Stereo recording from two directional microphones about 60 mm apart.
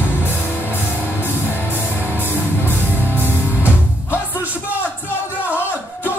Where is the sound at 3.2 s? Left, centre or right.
Right.